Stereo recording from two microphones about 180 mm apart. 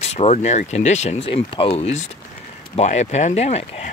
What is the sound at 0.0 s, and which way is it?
Speech, 35° left (ahead or behind).